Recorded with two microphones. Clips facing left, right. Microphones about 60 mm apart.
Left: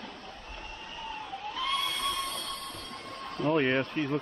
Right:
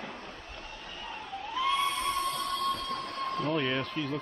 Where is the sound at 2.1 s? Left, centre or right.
Right.